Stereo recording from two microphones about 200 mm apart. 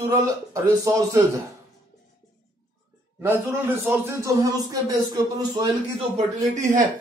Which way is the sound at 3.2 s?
10° right (ahead or behind).